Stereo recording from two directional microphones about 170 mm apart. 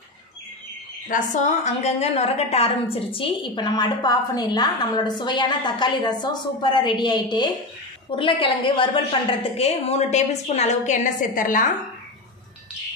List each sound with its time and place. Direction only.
1.0 s a woman's voice: 50° left (ahead or behind)